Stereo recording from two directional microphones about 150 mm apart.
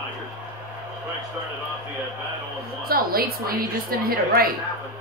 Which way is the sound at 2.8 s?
85° right.